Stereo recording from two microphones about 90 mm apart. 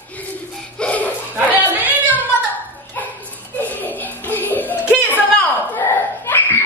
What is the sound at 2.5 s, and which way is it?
Music, 20° left (ahead or behind).